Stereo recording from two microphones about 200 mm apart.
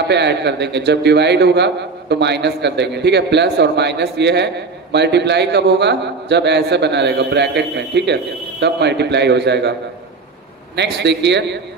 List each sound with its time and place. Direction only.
0.1 s a man's voice: 60° right (ahead or behind)
10.8 s a man's voice: 60° right (ahead or behind)